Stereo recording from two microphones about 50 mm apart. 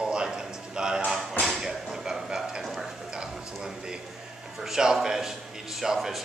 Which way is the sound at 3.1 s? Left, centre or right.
Centre.